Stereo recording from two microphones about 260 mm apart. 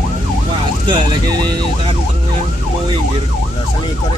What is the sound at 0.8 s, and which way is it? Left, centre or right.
Speech, centre.